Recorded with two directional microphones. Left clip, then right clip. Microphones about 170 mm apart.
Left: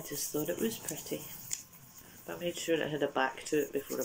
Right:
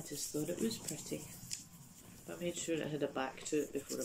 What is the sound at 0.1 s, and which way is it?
Speech, 15° right (ahead or behind).